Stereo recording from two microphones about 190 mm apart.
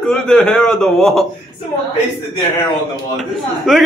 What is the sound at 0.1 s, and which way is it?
Speech, 5° left (ahead or behind).